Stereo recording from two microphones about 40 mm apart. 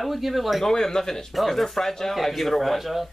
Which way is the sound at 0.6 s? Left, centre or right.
Centre.